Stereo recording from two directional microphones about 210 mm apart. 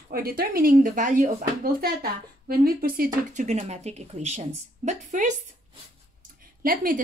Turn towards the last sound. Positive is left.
turn(degrees=-40)  # may be behind; listen again after turning